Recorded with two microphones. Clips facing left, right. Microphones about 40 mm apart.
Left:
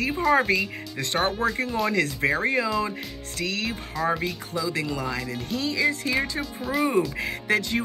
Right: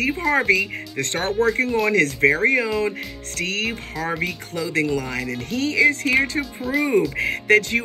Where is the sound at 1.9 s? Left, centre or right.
Right.